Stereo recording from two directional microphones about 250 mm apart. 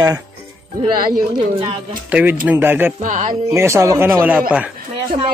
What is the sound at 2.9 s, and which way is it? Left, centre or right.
Speech, right.